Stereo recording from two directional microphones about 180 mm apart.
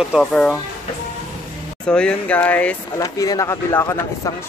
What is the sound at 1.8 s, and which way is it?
Speech, 5° left (ahead or behind).